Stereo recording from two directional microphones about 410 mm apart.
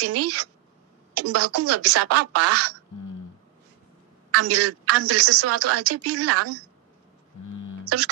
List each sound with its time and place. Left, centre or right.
0.0 s a woman's voice: right
4.3 s a woman's voice: right
7.8 s a sound: right